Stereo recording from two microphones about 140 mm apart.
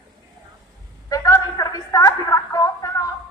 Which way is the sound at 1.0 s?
25° left (ahead or behind).